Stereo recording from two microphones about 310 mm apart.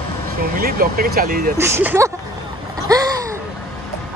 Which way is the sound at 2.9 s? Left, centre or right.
Centre.